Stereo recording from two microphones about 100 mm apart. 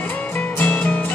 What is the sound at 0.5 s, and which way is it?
Music, 15° left (ahead or behind).